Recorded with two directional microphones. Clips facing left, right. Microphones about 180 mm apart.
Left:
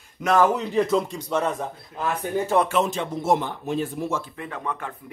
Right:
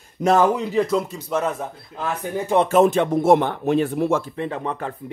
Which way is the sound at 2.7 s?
55° right (ahead or behind).